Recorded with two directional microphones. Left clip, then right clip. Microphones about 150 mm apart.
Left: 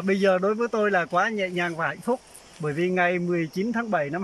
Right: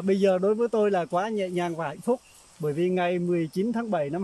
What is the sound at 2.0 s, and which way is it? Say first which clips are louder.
Cricket: even; 10° right (ahead or behind).